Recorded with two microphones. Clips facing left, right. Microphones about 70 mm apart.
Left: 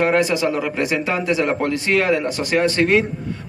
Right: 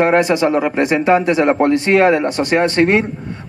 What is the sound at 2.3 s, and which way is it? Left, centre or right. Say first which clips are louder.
Speech: right 5 dB; right.